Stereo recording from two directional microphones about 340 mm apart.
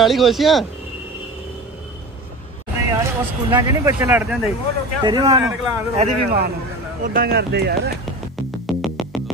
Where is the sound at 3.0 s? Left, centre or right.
Centre.